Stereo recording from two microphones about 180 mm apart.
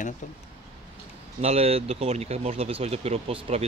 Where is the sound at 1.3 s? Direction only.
35° right (ahead or behind).